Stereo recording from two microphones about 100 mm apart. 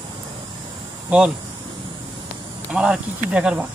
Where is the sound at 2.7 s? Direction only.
10° right (ahead or behind).